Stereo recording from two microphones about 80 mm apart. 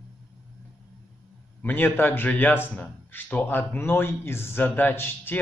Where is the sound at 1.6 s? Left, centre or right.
Left.